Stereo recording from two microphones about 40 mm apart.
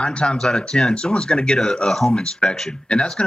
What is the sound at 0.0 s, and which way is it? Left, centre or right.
Speech, left.